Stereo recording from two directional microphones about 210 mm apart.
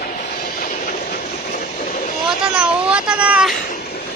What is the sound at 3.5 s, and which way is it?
Cat, 45° left (ahead or behind).